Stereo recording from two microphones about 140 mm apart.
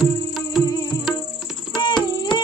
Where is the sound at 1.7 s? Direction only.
30° left (ahead or behind).